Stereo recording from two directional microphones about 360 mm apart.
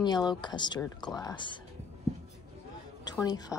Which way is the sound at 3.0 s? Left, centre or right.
Centre.